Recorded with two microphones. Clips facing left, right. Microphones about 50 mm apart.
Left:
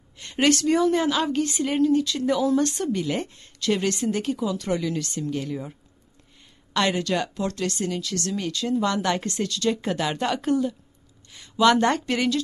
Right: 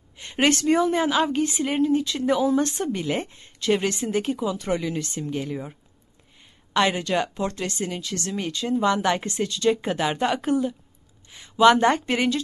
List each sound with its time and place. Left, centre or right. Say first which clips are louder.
0.2 s a woman's voice: even; right